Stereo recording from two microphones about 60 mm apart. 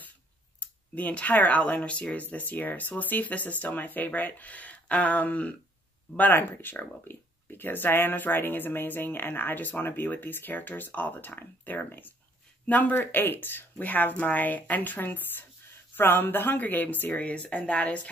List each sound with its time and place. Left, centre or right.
0.6 s speech: left
17.1 s speech: left